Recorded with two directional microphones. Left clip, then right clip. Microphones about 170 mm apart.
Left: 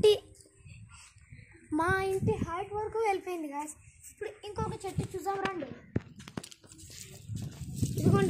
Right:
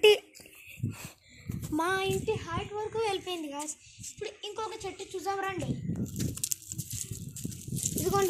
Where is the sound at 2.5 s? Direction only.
10° left (ahead or behind).